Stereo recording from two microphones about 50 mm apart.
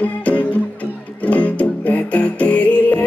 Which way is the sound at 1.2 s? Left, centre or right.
Left.